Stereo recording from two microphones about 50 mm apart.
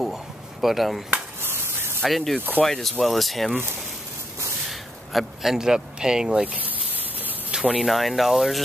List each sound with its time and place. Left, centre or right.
0.0 s a sound: centre
1.4 s chop: right
2.0 s speech: centre
4.6 s speech: centre
6.4 s speech: right
7.5 s speech: centre
7.8 s speech: centre